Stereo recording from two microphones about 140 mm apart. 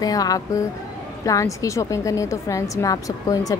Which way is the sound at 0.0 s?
25° left (ahead or behind).